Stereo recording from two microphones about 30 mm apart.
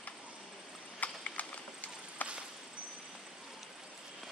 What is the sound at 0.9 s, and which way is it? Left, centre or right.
Horse, left.